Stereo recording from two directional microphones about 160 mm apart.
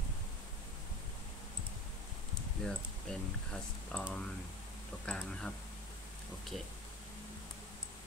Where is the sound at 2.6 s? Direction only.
5° left (ahead or behind).